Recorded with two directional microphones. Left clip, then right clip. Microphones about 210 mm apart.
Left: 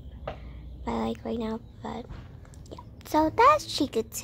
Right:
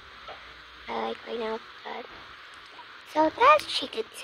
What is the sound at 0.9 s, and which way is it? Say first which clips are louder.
Speech: left 1 dB; 15° left (ahead or behind).